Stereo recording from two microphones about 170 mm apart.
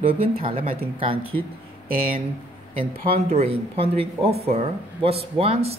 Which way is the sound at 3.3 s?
35° right (ahead or behind).